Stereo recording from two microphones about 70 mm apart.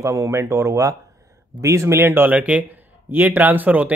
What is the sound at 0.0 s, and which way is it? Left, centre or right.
Speech, right.